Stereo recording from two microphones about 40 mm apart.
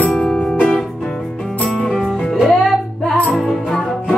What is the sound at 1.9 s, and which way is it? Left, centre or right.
Music, centre.